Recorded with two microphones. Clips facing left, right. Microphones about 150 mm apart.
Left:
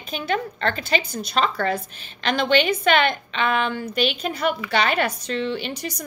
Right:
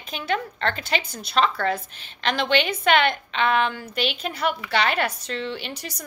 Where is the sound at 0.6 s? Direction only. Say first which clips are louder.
Left 2 dB; 15° left (ahead or behind).